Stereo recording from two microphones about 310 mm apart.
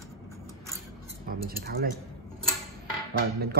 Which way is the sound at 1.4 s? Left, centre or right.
Right.